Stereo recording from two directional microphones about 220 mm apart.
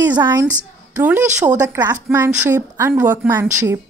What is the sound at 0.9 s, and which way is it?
A woman's voice, 10° right (ahead or behind).